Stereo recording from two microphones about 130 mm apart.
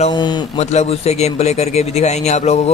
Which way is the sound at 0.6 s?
55° left (ahead or behind).